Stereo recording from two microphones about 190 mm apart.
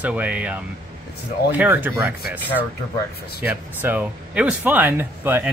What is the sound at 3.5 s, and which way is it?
Speech, 10° right (ahead or behind).